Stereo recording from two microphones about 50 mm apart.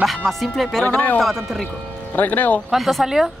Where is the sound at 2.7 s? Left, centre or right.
Centre.